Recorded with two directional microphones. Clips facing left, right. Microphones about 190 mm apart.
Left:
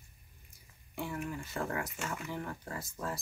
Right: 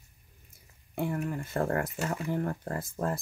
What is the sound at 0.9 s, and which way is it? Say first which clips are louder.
Speech: right 6 dB; 50° right (ahead or behind).